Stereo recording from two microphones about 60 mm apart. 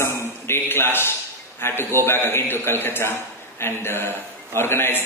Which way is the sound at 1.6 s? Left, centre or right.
Left.